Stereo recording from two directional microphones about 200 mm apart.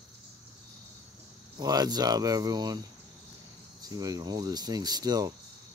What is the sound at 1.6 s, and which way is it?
Speech, 20° right (ahead or behind).